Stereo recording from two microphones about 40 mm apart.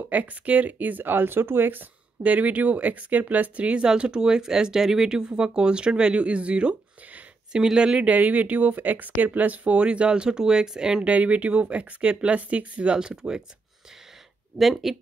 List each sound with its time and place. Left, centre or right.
0.1 s speech: right
2.2 s speech: right
3.6 s speech: right
8.0 s speech: right; by 11.1 s centre
11.1 s speech: right
12.8 s speech: centre
14.6 s speech: centre